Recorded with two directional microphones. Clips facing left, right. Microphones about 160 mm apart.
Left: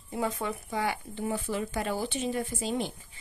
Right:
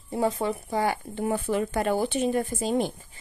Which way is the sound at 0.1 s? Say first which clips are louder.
Right 6 dB; 35° right (ahead or behind).